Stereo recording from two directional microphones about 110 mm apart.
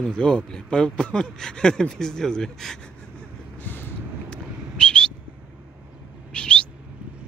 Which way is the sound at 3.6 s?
15° left (ahead or behind).